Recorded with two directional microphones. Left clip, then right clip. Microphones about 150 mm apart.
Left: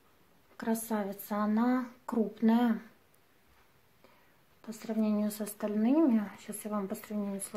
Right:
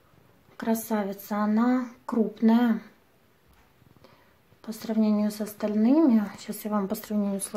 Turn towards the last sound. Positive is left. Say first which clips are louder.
# right 8 dB
turn(degrees=-10)  # may be behind; listen again after turning